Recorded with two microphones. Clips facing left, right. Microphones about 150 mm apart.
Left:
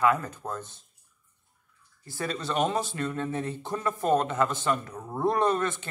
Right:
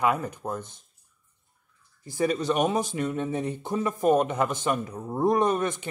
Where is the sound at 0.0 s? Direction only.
15° right (ahead or behind).